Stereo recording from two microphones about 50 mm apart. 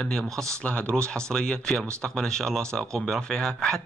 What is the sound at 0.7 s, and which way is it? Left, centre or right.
A man's voice, left.